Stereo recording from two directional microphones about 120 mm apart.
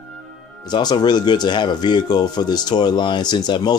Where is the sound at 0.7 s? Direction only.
35° left (ahead or behind).